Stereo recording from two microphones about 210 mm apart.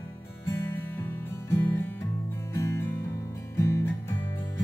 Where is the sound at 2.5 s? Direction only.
15° left (ahead or behind).